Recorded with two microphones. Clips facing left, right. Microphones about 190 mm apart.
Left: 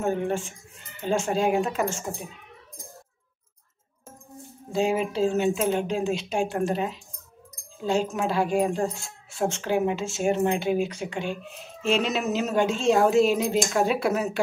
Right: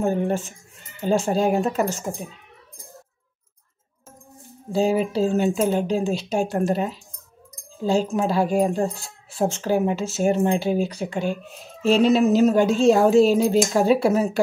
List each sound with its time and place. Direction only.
0.0 s speech: 35° right (ahead or behind)
4.7 s speech: 35° right (ahead or behind)